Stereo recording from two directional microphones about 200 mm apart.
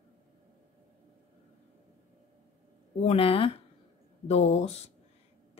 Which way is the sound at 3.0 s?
30° left (ahead or behind).